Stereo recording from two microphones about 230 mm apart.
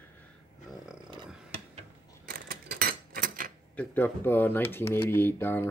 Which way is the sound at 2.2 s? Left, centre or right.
Right.